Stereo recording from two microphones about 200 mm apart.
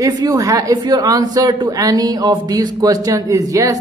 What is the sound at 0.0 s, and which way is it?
A man's voice, 15° right (ahead or behind).